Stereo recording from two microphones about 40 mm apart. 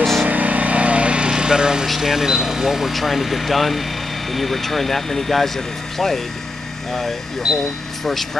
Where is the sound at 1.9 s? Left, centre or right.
Centre.